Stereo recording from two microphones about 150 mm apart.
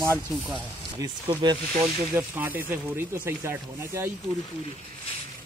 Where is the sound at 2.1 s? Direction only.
15° right (ahead or behind).